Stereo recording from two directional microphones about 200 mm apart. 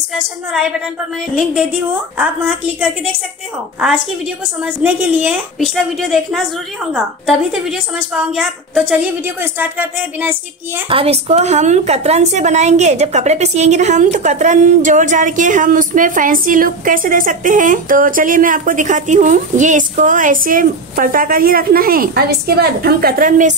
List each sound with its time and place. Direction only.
1.3 s a woman's voice: 5° right (ahead or behind)
4.8 s a woman's voice: 10° right (ahead or behind)
5.6 s a woman's voice: centre (ahead or behind)
10.9 s a woman's voice: 30° right (ahead or behind)